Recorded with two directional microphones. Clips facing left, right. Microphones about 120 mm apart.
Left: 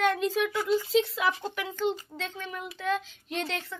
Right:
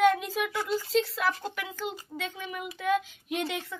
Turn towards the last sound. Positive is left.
turn(degrees=-10)  # may be behind; listen again after turning